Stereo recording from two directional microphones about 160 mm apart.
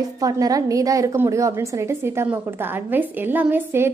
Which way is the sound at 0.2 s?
25° right (ahead or behind).